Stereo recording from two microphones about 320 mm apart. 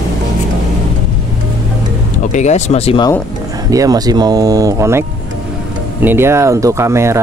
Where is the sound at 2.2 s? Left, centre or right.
Left.